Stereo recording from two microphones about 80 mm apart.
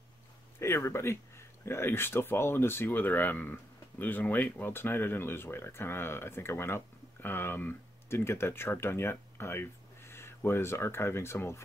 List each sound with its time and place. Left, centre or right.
0.6 s speech: left